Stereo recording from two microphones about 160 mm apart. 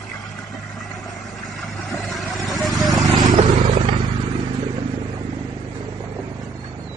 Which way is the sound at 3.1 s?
25° right (ahead or behind).